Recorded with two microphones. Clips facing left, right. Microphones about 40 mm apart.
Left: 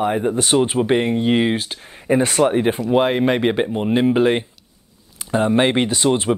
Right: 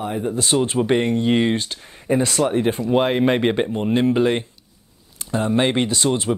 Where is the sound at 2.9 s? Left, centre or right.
Centre.